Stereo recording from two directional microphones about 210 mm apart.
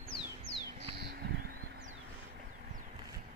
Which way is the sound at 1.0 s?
50° right (ahead or behind).